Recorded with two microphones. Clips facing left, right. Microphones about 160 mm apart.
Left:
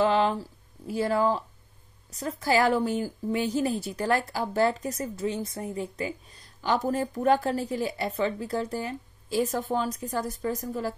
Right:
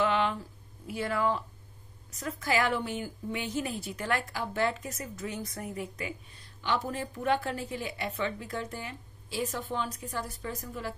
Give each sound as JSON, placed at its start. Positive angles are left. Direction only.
{"t": 0.0, "sound": "a woman's voice", "side_deg": 35}